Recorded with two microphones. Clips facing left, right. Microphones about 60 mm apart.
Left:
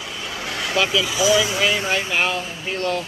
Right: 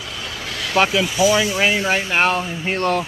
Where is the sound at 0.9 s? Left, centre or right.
Right.